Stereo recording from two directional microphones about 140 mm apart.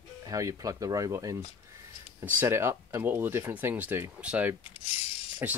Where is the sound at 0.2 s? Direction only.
25° right (ahead or behind).